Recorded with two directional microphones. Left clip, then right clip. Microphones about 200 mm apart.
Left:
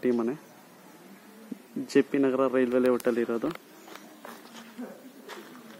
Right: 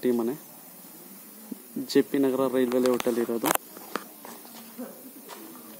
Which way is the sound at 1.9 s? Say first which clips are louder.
Right 1 dB; centre (ahead or behind).